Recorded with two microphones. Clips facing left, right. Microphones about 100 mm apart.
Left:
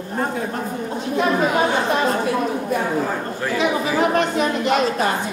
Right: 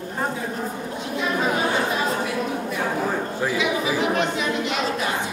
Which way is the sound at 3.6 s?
45° left (ahead or behind).